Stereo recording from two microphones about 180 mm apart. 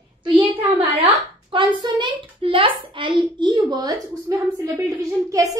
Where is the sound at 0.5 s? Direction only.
30° right (ahead or behind).